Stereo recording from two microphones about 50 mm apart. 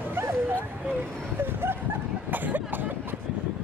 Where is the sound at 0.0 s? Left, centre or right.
Right.